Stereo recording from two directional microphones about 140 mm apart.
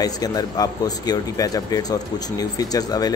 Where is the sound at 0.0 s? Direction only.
25° left (ahead or behind).